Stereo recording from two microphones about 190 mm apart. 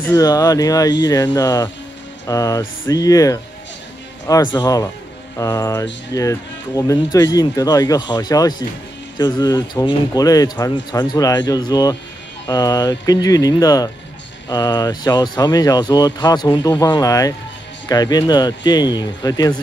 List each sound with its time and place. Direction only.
0.1 s speech: 20° left (ahead or behind)